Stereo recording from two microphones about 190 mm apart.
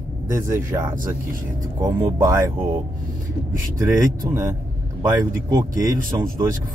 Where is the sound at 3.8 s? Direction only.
15° right (ahead or behind).